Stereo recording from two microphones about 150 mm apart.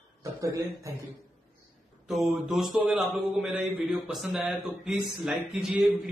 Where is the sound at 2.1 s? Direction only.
Centre (ahead or behind).